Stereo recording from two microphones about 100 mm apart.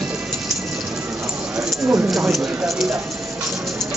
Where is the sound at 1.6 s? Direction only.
20° right (ahead or behind).